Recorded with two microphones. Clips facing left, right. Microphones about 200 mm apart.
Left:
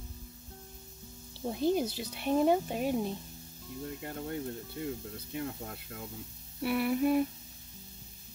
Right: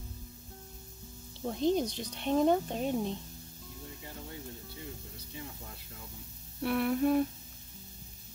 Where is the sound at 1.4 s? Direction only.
5° left (ahead or behind).